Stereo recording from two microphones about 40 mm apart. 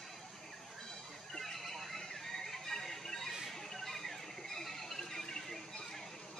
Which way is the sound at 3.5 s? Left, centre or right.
Centre.